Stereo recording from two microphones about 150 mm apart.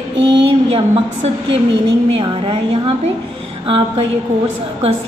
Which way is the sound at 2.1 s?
35° right (ahead or behind).